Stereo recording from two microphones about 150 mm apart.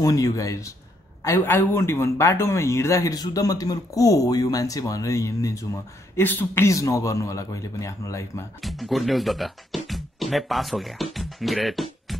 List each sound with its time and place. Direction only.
0.0 s speech: 25° left (ahead or behind)
8.5 s speech: centre (ahead or behind)
11.1 s music: centre (ahead or behind)